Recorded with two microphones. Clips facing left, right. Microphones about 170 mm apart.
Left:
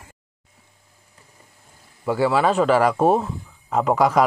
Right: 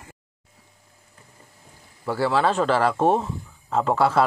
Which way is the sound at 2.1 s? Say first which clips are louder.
Left 3 dB; 10° left (ahead or behind).